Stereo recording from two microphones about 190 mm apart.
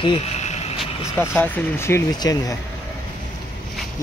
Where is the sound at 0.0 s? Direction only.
30° left (ahead or behind).